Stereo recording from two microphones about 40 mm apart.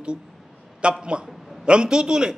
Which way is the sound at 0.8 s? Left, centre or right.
Right.